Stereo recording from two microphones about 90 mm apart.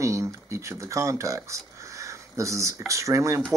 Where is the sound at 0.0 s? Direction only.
30° right (ahead or behind).